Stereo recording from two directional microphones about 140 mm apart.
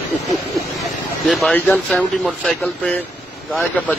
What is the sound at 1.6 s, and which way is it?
Speech, centre (ahead or behind).